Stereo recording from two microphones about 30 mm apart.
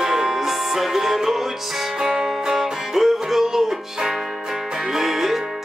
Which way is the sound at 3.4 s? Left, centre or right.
Centre.